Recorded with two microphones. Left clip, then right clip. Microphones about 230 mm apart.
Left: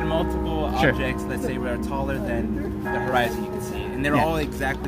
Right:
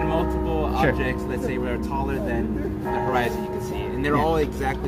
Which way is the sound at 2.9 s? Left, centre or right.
Left.